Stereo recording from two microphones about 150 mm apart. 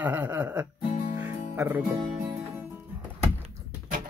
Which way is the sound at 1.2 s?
15° right (ahead or behind).